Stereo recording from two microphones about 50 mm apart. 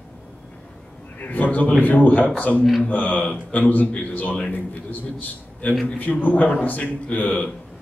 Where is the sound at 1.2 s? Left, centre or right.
Left.